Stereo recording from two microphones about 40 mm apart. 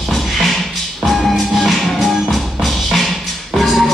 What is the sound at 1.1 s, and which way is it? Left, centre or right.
Music, centre.